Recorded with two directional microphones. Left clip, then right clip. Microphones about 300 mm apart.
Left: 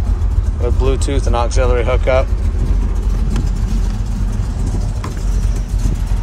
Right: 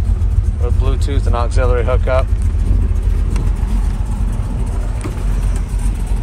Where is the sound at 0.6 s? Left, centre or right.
Centre.